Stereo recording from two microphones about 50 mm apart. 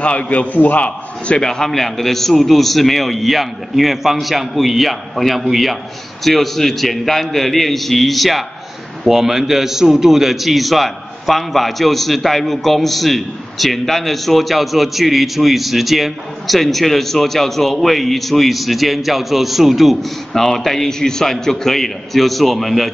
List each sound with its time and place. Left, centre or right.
0.0 s a man's voice: left; by 22.9 s centre